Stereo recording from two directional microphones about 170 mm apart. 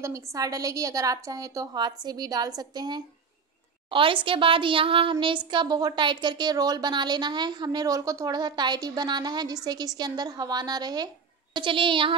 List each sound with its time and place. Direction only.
0.0 s a woman's voice: 20° right (ahead or behind)